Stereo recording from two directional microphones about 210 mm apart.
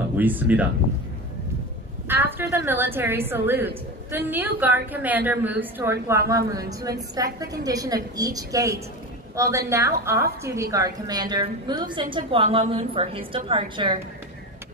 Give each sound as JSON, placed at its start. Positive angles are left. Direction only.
{"t": 0.2, "sound": "a woman's voice", "side_deg": -10}
{"t": 2.0, "sound": "a woman's voice", "side_deg": -10}